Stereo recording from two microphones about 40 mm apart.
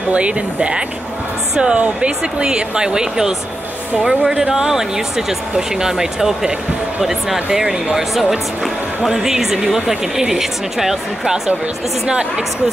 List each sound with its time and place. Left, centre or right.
0.1 s speech: right; by 11.5 s centre